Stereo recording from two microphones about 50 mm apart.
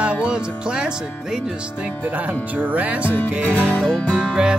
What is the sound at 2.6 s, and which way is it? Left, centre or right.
Music, right.